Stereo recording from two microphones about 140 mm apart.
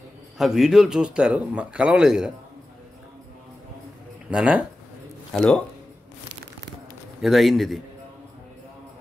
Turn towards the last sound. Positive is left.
turn(degrees=0)  # may be behind; listen again after turning